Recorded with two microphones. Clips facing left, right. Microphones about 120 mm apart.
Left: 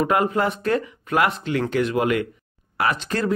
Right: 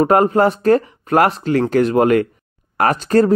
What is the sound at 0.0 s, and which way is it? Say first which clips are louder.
Speech: right 7 dB; 40° right (ahead or behind).